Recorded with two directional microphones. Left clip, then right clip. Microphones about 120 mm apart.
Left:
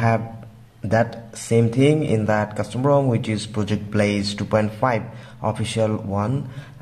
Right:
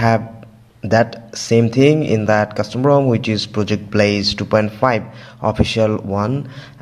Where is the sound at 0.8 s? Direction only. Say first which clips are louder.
Right 5 dB; 35° right (ahead or behind).